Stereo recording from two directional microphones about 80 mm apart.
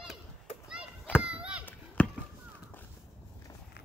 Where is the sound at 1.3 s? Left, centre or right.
Centre.